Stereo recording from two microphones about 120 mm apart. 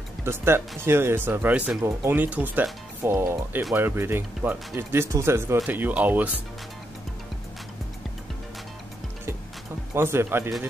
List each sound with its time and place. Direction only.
0.2 s speech: 20° right (ahead or behind)
1.8 s speech: 25° right (ahead or behind)
2.1 s speech: 15° right (ahead or behind)
9.9 s speech: 20° right (ahead or behind)